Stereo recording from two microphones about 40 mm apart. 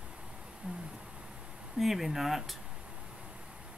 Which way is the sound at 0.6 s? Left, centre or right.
Right.